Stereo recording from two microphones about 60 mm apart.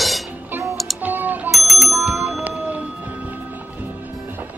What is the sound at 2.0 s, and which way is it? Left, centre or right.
Music, right.